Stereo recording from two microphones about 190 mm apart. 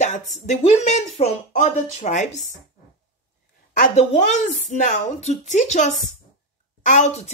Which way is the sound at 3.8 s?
35° left (ahead or behind).